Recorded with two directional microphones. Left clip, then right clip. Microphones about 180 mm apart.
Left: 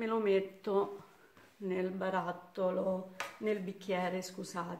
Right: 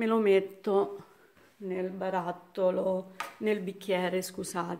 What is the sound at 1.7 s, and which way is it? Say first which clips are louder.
Speech: right 3 dB; 10° right (ahead or behind).